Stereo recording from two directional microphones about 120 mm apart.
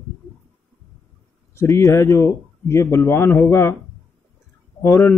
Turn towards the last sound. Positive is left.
turn(degrees=25)  # may be behind; listen again after turning